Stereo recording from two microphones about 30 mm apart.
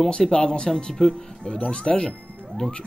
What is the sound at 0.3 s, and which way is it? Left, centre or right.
Speech, left.